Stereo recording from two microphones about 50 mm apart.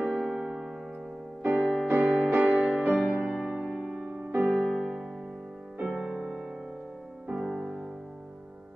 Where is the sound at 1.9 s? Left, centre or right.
Right.